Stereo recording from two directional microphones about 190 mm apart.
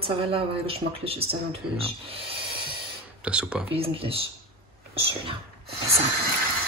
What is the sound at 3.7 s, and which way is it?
Speech, 30° right (ahead or behind).